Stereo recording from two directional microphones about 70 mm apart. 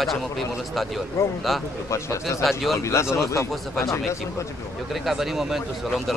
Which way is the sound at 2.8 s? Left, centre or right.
Left.